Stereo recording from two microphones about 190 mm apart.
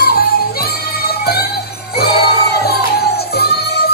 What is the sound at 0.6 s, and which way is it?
Music, 55° left (ahead or behind).